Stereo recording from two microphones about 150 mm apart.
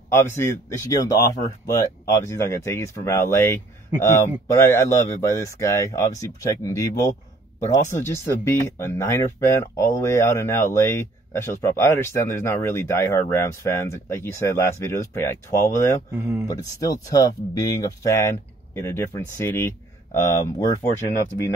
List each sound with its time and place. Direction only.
0.1 s speech: 15° left (ahead or behind)
16.1 s speech: 10° right (ahead or behind)
16.8 s speech: 25° left (ahead or behind)